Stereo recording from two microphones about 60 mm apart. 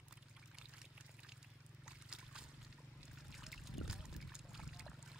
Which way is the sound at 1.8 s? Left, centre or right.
Centre.